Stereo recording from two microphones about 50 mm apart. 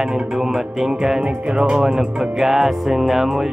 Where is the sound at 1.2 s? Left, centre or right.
Right.